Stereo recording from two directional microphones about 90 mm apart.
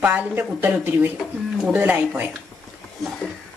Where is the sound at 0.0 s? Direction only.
20° right (ahead or behind).